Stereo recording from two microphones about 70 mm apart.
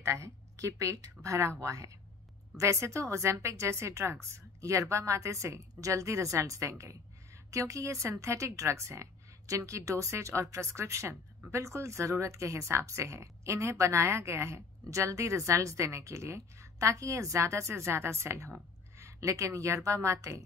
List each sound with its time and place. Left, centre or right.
0.0 s a woman's voice: right